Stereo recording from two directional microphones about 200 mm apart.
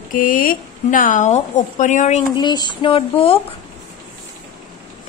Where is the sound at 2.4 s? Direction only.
20° left (ahead or behind).